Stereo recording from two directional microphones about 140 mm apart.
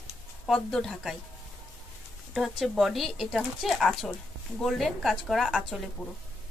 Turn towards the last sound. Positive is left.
turn(degrees=0)  # may be behind; listen again after turning